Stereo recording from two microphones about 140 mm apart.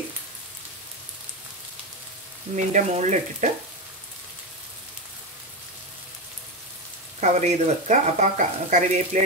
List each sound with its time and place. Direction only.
2.5 s speech: 60° right (ahead or behind)
7.2 s speech: 55° right (ahead or behind)